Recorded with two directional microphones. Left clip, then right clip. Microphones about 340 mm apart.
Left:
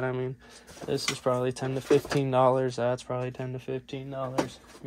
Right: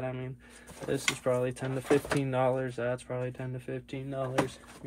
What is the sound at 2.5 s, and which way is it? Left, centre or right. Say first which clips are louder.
Speech: left 6 dB; left.